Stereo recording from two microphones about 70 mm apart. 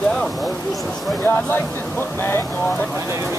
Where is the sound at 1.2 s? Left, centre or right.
Left.